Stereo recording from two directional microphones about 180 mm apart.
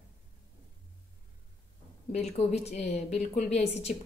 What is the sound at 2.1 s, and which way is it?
Speech, 35° left (ahead or behind).